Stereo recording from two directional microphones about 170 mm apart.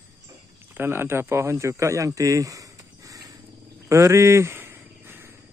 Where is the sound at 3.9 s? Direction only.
15° right (ahead or behind).